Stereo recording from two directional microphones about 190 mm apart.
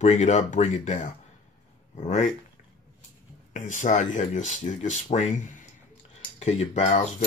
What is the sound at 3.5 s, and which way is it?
Speech, 40° left (ahead or behind).